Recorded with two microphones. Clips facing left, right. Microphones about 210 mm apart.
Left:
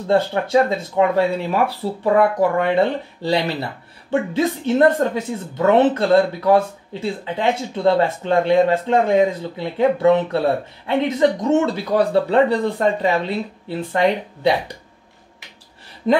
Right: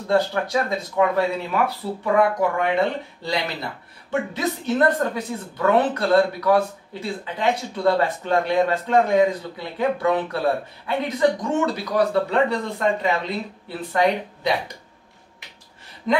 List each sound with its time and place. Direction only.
0.1 s a woman's voice: 25° left (ahead or behind)